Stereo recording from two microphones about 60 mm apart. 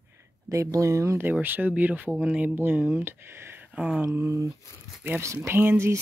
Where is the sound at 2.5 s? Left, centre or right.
Right.